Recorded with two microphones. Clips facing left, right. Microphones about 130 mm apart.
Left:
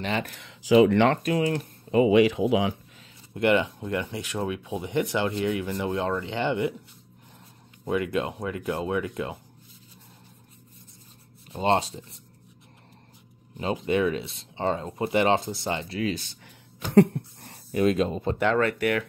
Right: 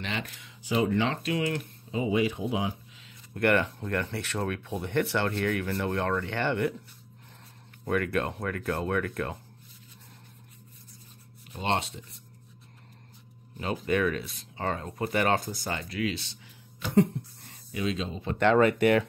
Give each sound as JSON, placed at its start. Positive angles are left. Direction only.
{"t": 0.0, "sound": "speech", "side_deg": 40}
{"t": 0.4, "sound": "speech", "side_deg": 85}
{"t": 1.2, "sound": "speech", "side_deg": 40}
{"t": 1.9, "sound": "speech", "side_deg": 80}
{"t": 3.3, "sound": "speech", "side_deg": 15}
{"t": 7.8, "sound": "speech", "side_deg": 15}
{"t": 11.5, "sound": "speech", "side_deg": 30}
{"t": 13.6, "sound": "speech", "side_deg": 25}
{"t": 16.0, "sound": "speech", "side_deg": 45}
{"t": 16.9, "sound": "speech", "side_deg": 65}
{"t": 18.6, "sound": "speech", "side_deg": -20}